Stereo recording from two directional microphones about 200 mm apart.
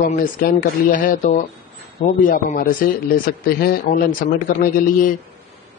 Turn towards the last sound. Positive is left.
turn(degrees=45)  # may be behind; listen again after turning